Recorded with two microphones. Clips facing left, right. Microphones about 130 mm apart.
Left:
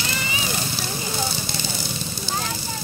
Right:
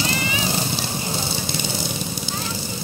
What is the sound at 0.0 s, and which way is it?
Vehicle, 35° right (ahead or behind).